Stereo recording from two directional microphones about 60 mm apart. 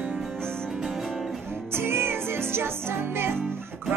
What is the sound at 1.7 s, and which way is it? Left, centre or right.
Music, right.